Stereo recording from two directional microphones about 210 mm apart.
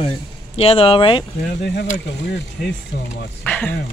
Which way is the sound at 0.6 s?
25° left (ahead or behind).